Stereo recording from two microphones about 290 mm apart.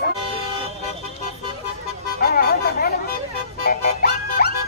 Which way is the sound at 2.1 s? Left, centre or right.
Left.